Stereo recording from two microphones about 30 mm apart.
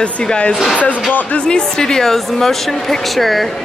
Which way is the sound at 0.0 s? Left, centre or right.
Left.